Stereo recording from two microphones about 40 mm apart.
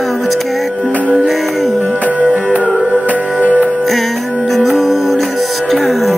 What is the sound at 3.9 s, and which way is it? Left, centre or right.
Music, centre.